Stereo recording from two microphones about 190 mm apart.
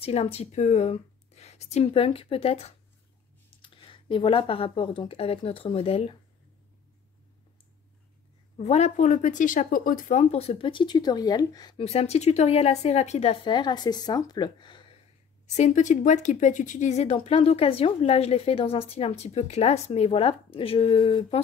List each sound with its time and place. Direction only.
0.0 s speech: 30° left (ahead or behind)
8.5 s a woman's voice: 35° left (ahead or behind)
11.8 s a woman's voice: 35° left (ahead or behind)
15.4 s a woman's voice: 40° left (ahead or behind)